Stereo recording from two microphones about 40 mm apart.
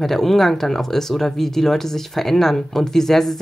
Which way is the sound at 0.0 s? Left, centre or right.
Centre.